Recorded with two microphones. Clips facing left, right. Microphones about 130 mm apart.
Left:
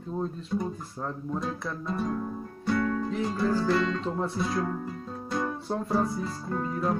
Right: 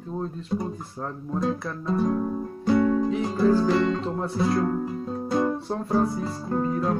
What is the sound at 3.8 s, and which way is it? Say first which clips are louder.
Guitar: right 5 dB; 25° right (ahead or behind).